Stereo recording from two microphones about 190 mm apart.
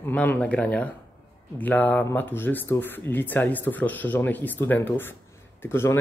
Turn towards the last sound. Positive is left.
turn(degrees=15)  # may be behind; listen again after turning